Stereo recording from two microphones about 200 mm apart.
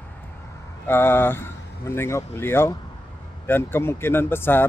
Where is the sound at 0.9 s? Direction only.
10° left (ahead or behind).